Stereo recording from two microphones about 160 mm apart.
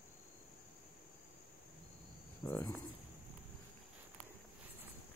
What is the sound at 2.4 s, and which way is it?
Insect, 15° left (ahead or behind).